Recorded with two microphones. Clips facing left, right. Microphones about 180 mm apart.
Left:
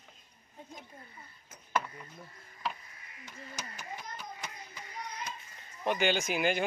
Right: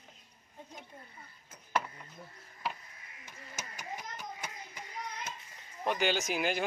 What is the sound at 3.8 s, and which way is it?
Hands, 15° right (ahead or behind).